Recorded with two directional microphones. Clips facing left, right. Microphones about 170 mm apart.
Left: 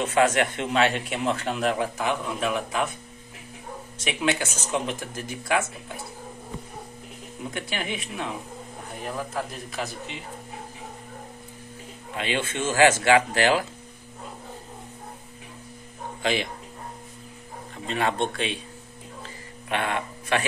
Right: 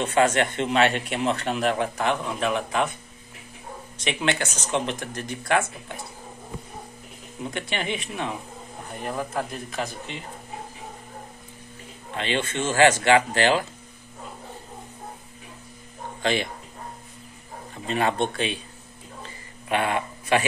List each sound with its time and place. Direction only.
0.0 s speech: 5° left (ahead or behind)
4.0 s speech: 5° left (ahead or behind)
7.5 s speech: 5° left (ahead or behind)
12.1 s speech: 5° left (ahead or behind)
16.2 s speech: 5° left (ahead or behind)
17.8 s speech: 5° right (ahead or behind)
19.7 s speech: 10° right (ahead or behind)